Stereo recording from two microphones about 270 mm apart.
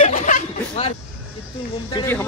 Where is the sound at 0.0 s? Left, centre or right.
Left.